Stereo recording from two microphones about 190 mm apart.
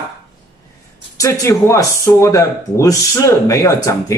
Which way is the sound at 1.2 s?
15° left (ahead or behind).